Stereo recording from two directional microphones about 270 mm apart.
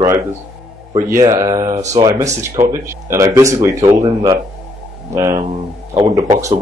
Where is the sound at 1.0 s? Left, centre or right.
Centre.